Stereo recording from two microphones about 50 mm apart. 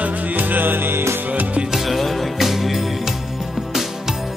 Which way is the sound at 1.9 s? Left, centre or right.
Centre.